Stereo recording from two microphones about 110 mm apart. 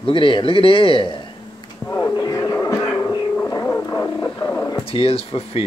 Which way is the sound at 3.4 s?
25° left (ahead or behind).